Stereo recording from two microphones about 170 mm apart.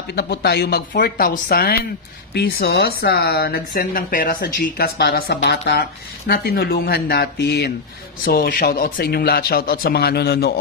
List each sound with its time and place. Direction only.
0.1 s speech: 70° left (ahead or behind)
2.3 s speech: 75° left (ahead or behind)
8.3 s speech: 60° left (ahead or behind)